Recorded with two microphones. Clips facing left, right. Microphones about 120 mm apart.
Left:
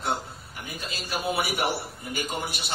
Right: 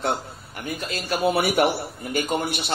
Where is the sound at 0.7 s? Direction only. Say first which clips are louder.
Right 6 dB; 60° right (ahead or behind).